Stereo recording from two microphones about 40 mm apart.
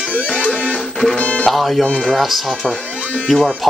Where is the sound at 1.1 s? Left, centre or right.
Left.